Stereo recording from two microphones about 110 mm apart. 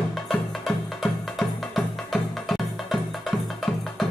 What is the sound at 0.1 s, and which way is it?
Music, centre (ahead or behind).